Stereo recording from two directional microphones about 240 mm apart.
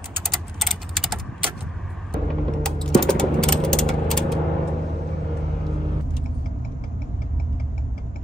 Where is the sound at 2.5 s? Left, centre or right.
Centre.